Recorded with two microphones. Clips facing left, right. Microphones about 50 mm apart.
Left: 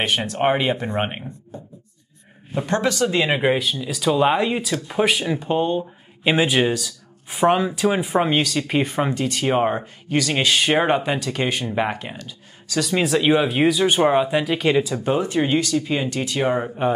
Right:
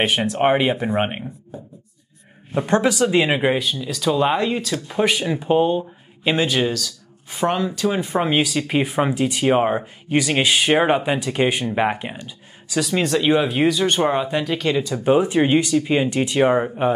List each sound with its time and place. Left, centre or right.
0.0 s speech: centre
2.6 s speech: centre
6.2 s speech: centre
8.3 s speech: centre
12.8 s speech: centre
15.0 s speech: centre